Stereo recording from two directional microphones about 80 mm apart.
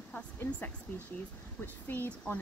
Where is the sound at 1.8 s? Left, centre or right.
Left.